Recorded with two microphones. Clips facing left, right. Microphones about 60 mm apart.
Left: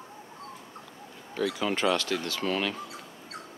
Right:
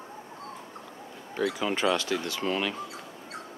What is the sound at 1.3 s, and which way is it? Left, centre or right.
Speech, right.